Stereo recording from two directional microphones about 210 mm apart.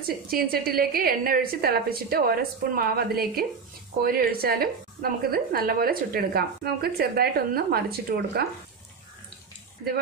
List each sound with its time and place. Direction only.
0.0 s a woman's voice: 45° right (ahead or behind)